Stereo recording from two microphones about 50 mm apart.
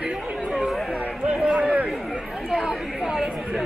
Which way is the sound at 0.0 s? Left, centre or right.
Centre.